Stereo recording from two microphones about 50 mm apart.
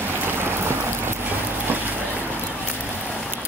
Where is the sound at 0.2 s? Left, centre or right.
Right.